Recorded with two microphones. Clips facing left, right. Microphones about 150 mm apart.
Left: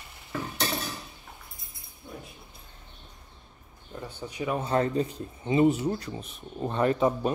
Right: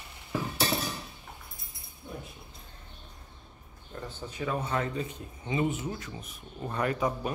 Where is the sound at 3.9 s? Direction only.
15° left (ahead or behind).